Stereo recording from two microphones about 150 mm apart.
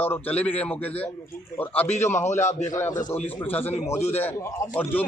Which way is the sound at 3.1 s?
10° left (ahead or behind).